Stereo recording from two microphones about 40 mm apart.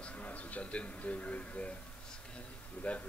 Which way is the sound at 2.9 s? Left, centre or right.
Left.